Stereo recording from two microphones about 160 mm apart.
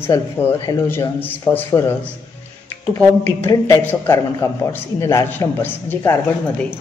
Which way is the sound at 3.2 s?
15° left (ahead or behind).